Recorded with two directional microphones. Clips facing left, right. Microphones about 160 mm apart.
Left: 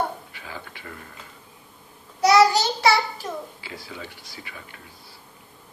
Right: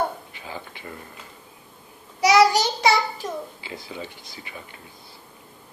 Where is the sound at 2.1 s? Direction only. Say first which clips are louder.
Even; 15° right (ahead or behind).